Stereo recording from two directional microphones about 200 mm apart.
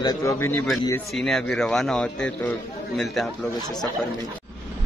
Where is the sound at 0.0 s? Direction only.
20° left (ahead or behind); by 3.3 s centre (ahead or behind).